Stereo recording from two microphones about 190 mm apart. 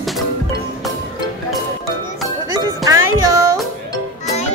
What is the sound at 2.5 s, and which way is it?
Music, 15° right (ahead or behind).